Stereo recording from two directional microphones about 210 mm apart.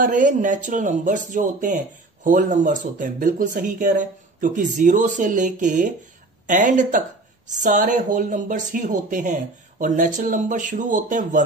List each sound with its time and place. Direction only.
0.0 s speech: 40° right (ahead or behind)